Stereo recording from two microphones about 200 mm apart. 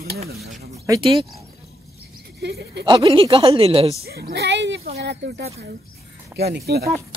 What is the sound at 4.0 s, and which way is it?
Speech, 55° right (ahead or behind).